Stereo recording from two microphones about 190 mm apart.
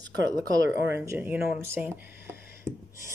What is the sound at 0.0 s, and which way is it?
Speech, 20° right (ahead or behind).